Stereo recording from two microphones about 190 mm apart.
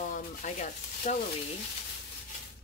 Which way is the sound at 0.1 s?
40° left (ahead or behind).